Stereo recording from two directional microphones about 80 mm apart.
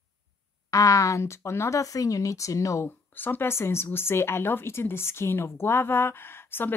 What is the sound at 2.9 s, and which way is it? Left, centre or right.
Speech, left.